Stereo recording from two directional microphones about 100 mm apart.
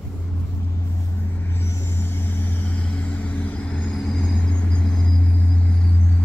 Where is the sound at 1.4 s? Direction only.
25° left (ahead or behind).